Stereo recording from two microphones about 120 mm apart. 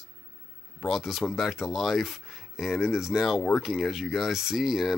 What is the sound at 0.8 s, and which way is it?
Speech, centre (ahead or behind).